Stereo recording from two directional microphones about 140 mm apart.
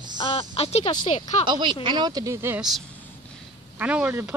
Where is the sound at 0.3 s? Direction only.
45° left (ahead or behind).